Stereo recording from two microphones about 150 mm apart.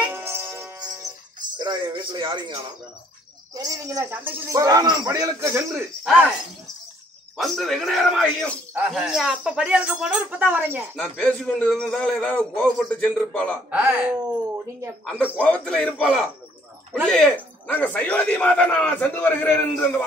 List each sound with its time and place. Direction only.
0.1 s music: 15° right (ahead or behind)
1.6 s music: 30° right (ahead or behind)
3.5 s speech: 20° right (ahead or behind)
7.3 s a man's voice: centre (ahead or behind)
11.0 s a man's voice: 5° left (ahead or behind)
13.7 s speech: 10° right (ahead or behind)
15.3 s a man's voice: 10° left (ahead or behind)